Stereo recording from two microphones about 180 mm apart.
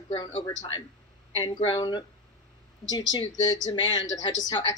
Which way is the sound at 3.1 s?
20° left (ahead or behind).